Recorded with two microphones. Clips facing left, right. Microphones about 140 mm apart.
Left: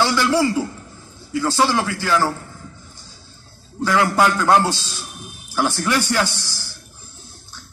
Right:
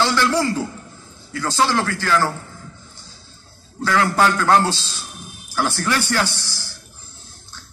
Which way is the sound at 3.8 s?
15° left (ahead or behind).